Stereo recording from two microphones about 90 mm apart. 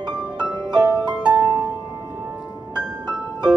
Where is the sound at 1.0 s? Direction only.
10° right (ahead or behind).